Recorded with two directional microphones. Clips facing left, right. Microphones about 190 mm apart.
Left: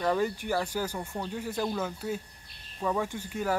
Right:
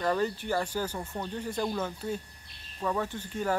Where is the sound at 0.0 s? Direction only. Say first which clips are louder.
Left 1 dB; 10° left (ahead or behind).